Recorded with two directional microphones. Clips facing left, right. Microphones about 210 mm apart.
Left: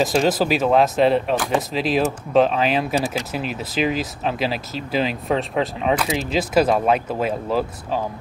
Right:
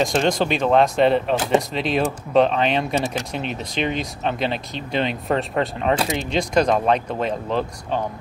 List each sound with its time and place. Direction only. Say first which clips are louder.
0.0 s speech: left 1 dB; 5° left (ahead or behind)
1.3 s speech: right 2 dB; 25° right (ahead or behind)
1.7 s speech: left 1 dB; centre (ahead or behind)